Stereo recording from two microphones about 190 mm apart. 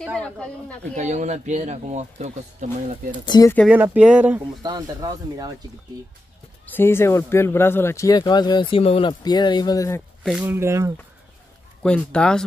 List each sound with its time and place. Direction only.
0.0 s speech: 5° left (ahead or behind)
0.9 s speech: 35° right (ahead or behind)
3.3 s speech: 20° left (ahead or behind)
3.6 s speech: 10° right (ahead or behind)
4.6 s speech: 20° right (ahead or behind)
6.6 s speech: 10° left (ahead or behind)
10.2 s speech: 5° right (ahead or behind)
11.8 s speech: 5° left (ahead or behind)